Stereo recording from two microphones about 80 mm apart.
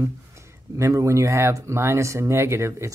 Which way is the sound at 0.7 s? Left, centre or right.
Right.